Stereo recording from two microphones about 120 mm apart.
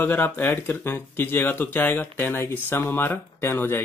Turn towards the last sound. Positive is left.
turn(degrees=20)  # may be behind; listen again after turning